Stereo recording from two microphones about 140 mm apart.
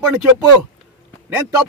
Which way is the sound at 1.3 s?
15° right (ahead or behind).